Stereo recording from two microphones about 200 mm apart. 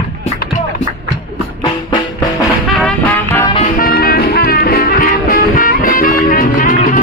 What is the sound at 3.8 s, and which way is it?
Music, 50° left (ahead or behind).